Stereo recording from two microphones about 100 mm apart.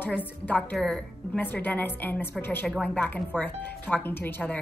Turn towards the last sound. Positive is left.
turn(degrees=20)  # may be behind; listen again after turning